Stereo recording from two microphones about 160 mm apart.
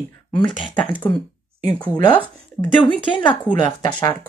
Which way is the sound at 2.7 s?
30° left (ahead or behind).